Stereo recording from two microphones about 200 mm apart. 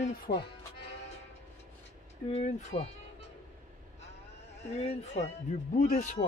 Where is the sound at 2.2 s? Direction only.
30° left (ahead or behind).